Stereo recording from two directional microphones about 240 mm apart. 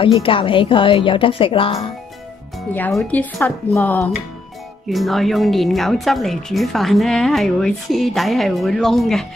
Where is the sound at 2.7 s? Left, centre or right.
Centre.